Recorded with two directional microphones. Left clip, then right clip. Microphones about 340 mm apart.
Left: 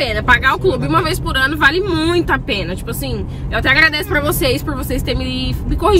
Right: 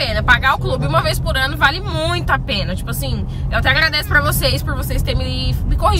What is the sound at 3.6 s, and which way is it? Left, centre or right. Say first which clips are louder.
Speech: left 3 dB; centre.